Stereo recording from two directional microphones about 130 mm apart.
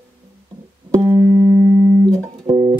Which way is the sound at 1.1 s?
30° right (ahead or behind).